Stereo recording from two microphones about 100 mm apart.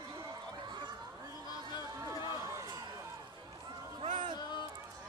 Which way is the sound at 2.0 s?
35° right (ahead or behind).